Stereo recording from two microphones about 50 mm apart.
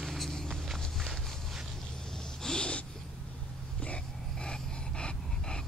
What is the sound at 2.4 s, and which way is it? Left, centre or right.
Snort, centre.